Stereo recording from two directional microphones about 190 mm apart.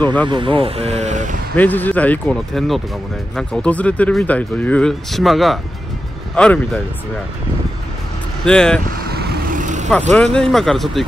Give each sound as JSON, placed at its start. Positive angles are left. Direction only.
{"t": 0.0, "sound": "speech", "side_deg": 10}
{"t": 0.3, "sound": "speech", "side_deg": -25}
{"t": 1.6, "sound": "speech", "side_deg": 10}
{"t": 8.5, "sound": "speech", "side_deg": 5}
{"t": 9.1, "sound": "vehicle", "side_deg": -45}
{"t": 10.1, "sound": "speech", "side_deg": 5}